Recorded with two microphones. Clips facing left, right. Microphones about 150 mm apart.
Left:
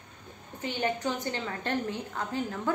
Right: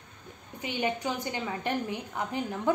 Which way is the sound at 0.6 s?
15° right (ahead or behind).